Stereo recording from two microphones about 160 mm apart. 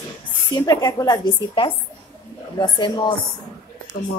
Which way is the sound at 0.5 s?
25° left (ahead or behind).